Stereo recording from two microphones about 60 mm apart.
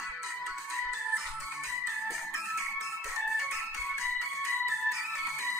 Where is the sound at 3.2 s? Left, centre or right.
Centre.